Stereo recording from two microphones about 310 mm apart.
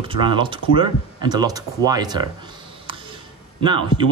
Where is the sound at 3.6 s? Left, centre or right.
Centre.